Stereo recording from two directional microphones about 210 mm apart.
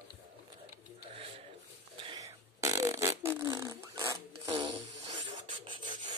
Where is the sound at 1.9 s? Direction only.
20° right (ahead or behind).